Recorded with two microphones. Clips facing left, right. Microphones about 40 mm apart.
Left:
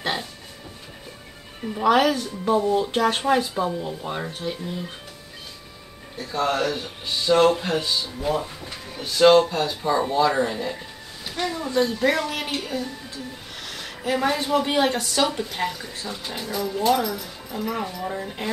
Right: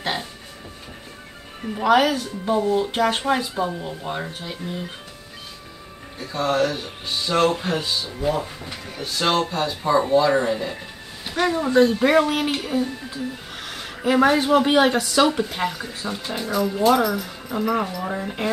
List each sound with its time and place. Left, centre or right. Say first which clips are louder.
1.6 s speech: right 1 dB; centre
6.1 s speech: right 2 dB; centre
11.3 s speech: right 6 dB; right
12.5 s speech: right 4 dB; right